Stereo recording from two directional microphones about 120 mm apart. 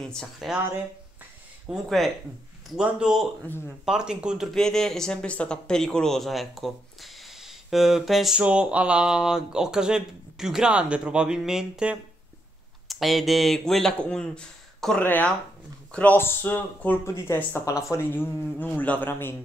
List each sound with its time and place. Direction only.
0.0 s speech: 5° left (ahead or behind)
1.7 s speech: centre (ahead or behind)
3.4 s speech: 15° left (ahead or behind)
3.8 s speech: 5° right (ahead or behind)
4.6 s speech: 5° left (ahead or behind)